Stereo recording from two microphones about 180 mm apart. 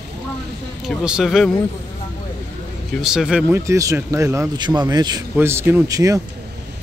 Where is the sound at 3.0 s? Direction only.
5° right (ahead or behind).